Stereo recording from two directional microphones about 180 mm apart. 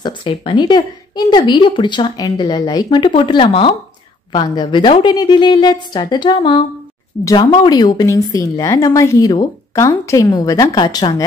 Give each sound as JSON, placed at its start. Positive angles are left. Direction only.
{"t": 0.0, "sound": "a woman's voice", "side_deg": 30}